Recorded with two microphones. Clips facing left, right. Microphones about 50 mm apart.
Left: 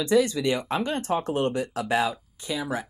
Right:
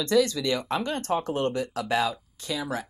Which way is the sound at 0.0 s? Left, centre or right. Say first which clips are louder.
Left 1 dB; centre.